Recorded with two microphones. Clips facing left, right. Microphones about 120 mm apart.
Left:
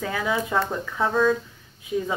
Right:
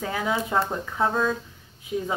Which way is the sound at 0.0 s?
20° right (ahead or behind).